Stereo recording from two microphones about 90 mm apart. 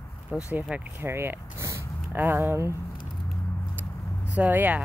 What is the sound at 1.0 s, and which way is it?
Speech, 25° right (ahead or behind).